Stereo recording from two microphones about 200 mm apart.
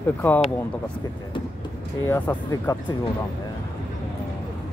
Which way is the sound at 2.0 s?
15° left (ahead or behind).